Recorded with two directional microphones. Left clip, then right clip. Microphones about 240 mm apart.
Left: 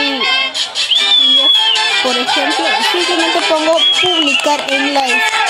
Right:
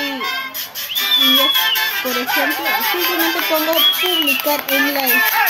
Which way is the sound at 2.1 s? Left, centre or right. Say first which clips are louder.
Left 4 dB; left.